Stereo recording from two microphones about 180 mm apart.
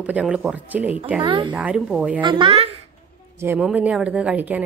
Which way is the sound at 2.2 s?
25° right (ahead or behind).